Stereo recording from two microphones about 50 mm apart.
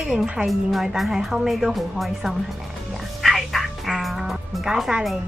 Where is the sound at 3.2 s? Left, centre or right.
Centre.